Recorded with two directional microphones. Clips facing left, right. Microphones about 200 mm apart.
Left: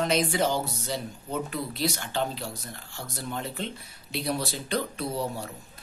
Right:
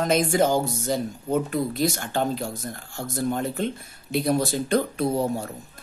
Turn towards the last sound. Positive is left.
turn(degrees=-50)  # may be behind; listen again after turning